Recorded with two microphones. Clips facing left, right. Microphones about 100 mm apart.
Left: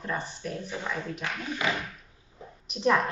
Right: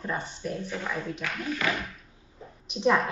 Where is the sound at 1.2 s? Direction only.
25° left (ahead or behind).